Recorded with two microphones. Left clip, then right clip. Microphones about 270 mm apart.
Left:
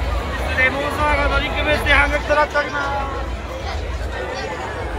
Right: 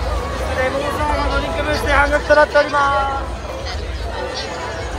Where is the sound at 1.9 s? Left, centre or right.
Right.